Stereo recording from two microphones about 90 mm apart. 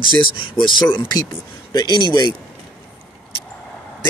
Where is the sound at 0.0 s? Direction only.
65° left (ahead or behind).